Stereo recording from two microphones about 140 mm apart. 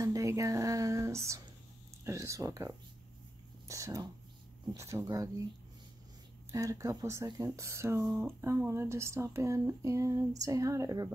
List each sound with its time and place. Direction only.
0.0 s a sound: 25° right (ahead or behind)
2.0 s speech: 20° right (ahead or behind)
3.6 s whispering: 25° right (ahead or behind)
4.7 s speech: 20° right (ahead or behind)
6.5 s speech: 25° right (ahead or behind)